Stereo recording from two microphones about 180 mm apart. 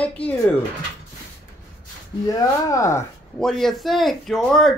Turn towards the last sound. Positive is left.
turn(degrees=0)  # may be behind; listen again after turning